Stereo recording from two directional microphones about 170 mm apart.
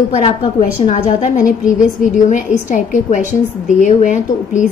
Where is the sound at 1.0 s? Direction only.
50° left (ahead or behind).